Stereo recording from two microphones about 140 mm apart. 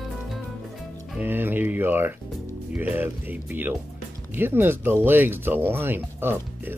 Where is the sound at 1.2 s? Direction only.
15° right (ahead or behind).